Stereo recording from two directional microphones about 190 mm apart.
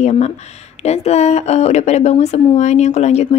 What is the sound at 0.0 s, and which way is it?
Speech, 35° left (ahead or behind).